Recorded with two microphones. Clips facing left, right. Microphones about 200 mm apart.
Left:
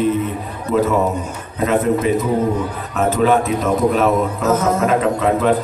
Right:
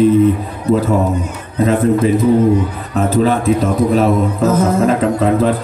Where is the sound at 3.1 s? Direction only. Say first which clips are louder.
Right 3 dB; 35° right (ahead or behind).